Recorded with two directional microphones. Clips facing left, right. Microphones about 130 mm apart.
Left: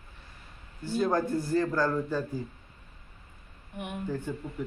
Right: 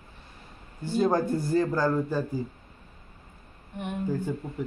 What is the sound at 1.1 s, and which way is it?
A man's voice, 15° right (ahead or behind).